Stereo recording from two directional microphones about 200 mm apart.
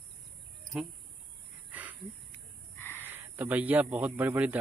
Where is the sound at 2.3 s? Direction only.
10° left (ahead or behind).